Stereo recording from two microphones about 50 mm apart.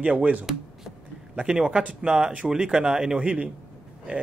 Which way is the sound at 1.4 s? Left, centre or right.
Centre.